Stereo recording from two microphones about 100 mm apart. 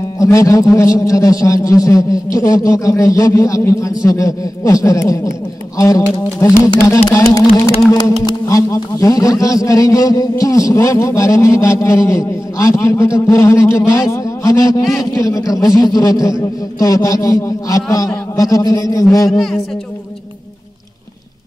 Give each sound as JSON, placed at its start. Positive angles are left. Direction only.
{"t": 0.2, "sound": "a man's voice", "side_deg": 30}
{"t": 8.5, "sound": "a man's voice", "side_deg": 30}
{"t": 14.8, "sound": "a man's voice", "side_deg": 0}
{"t": 15.1, "sound": "a man's voice", "side_deg": 35}
{"t": 19.3, "sound": "a man's voice", "side_deg": 0}